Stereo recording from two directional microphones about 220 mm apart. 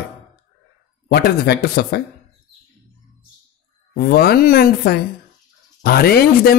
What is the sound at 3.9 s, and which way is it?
Speech, 45° left (ahead or behind).